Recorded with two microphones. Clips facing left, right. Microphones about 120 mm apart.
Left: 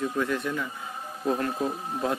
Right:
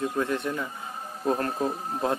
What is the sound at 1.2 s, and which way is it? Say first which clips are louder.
Speech: right 1 dB; 40° right (ahead or behind).